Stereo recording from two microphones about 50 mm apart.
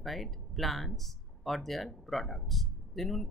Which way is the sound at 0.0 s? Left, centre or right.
Centre.